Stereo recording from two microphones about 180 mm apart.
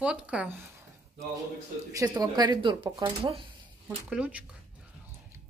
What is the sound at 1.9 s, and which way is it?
Speech, 20° right (ahead or behind).